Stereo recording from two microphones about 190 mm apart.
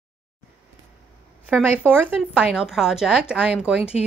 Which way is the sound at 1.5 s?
10° right (ahead or behind).